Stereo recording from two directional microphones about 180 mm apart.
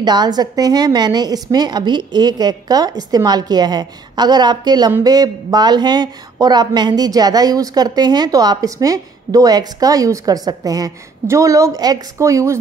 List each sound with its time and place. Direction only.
0.0 s a woman's voice: 25° right (ahead or behind)